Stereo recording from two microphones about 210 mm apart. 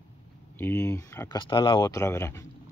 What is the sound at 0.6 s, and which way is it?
Speech, 10° left (ahead or behind).